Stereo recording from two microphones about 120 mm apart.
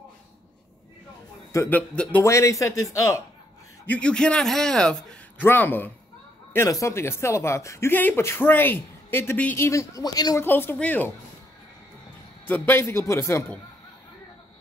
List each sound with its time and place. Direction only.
1.7 s speech: 10° left (ahead or behind)
2.2 s speech: 25° left (ahead or behind)
3.8 s speech: 10° left (ahead or behind)
5.4 s speech: 15° left (ahead or behind)
9.7 s speech: 25° left (ahead or behind)
10.4 s speech: 20° left (ahead or behind)
12.4 s speech: 15° left (ahead or behind)